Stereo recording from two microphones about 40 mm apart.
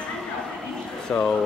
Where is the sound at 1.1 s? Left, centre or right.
Left.